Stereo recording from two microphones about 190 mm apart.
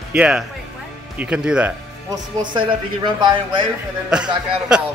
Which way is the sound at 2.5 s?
25° right (ahead or behind).